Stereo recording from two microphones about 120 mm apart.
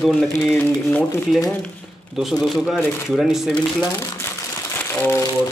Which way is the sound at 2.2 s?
Centre (ahead or behind).